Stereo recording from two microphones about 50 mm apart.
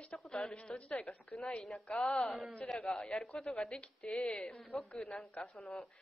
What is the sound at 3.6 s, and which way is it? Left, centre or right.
A woman's voice, left.